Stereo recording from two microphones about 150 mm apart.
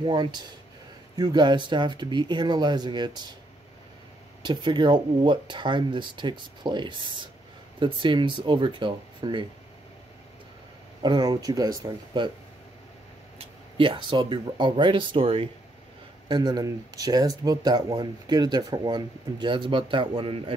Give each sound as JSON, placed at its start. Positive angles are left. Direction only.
{"t": 0.0, "sound": "speech", "side_deg": -30}
{"t": 4.5, "sound": "speech", "side_deg": -30}
{"t": 11.0, "sound": "speech", "side_deg": -25}
{"t": 13.4, "sound": "speech", "side_deg": -35}